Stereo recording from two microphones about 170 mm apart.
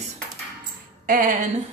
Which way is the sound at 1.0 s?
55° right (ahead or behind).